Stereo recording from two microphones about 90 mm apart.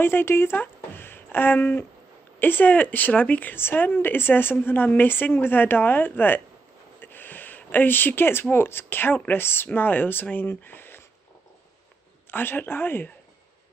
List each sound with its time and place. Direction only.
0.0 s speech: 25° left (ahead or behind)
12.3 s speech: 20° left (ahead or behind)